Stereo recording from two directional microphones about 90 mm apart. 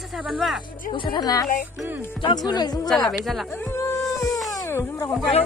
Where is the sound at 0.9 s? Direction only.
50° left (ahead or behind).